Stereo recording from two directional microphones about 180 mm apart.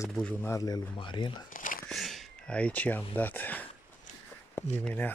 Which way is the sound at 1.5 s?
45° left (ahead or behind).